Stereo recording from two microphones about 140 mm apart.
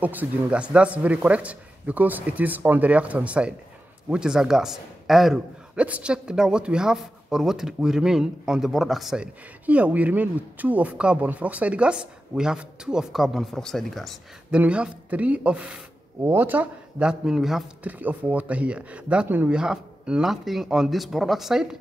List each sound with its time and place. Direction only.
0.0 s a man's voice: 10° right (ahead or behind)
14.6 s a man's voice: 10° right (ahead or behind)